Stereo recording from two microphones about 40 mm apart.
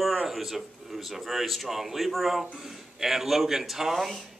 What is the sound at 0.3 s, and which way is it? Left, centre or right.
Speech, centre.